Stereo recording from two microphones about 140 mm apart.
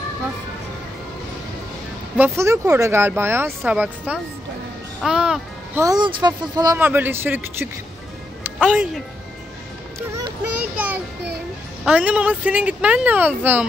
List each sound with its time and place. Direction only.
2.1 s a child's voice: 15° right (ahead or behind)
5.8 s speech: 30° right (ahead or behind)
6.8 s speech: 15° right (ahead or behind)
8.6 s speech: 5° right (ahead or behind)
11.8 s speech: 10° right (ahead or behind)